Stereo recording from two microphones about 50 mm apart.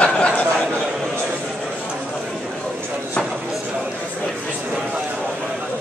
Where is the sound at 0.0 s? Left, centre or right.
Left.